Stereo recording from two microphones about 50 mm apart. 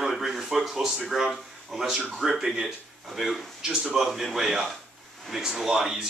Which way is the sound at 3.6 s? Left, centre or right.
Centre.